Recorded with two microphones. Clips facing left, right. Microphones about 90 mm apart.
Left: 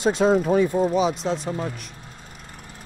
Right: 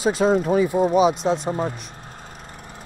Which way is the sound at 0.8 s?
15° right (ahead or behind).